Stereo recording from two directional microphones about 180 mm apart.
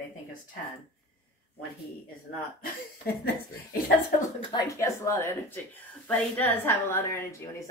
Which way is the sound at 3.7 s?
55° left (ahead or behind).